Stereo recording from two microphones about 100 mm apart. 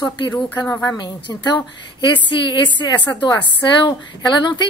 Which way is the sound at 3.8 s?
50° left (ahead or behind).